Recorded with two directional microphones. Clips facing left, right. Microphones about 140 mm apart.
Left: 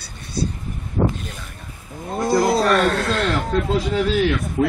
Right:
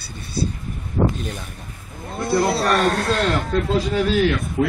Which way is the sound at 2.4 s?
35° right (ahead or behind).